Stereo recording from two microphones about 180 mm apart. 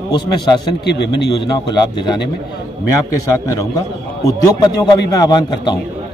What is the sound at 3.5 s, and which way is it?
A man's voice, 20° left (ahead or behind).